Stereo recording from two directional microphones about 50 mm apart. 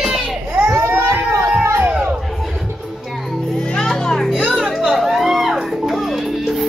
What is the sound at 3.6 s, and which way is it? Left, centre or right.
Music, centre.